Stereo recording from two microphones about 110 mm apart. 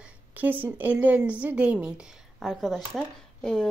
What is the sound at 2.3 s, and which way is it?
A woman's voice, centre (ahead or behind).